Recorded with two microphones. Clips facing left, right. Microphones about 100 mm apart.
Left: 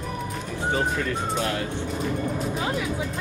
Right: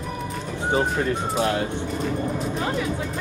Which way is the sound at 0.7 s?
30° right (ahead or behind).